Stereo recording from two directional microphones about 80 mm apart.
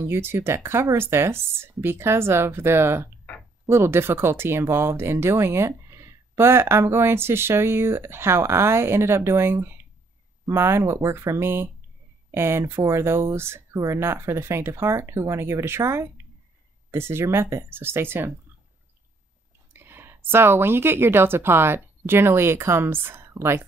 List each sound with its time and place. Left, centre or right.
0.0 s speech: right
19.7 s a woman's voice: right